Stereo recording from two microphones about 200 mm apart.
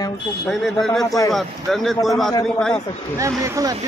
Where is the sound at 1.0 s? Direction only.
15° left (ahead or behind).